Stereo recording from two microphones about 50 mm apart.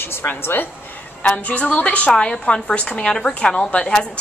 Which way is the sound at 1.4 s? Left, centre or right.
Left.